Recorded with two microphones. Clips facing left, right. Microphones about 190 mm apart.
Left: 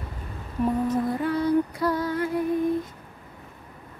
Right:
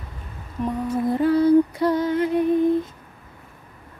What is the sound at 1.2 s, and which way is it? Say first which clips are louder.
Music: right 10 dB; 30° right (ahead or behind).